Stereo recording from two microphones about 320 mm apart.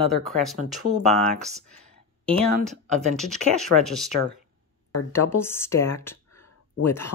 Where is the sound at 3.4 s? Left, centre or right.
Left.